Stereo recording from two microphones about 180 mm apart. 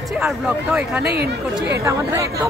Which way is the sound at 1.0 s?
60° right (ahead or behind).